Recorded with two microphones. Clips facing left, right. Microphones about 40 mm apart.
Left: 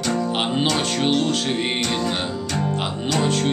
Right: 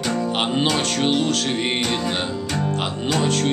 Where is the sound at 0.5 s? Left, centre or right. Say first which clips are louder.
Right 1 dB; centre.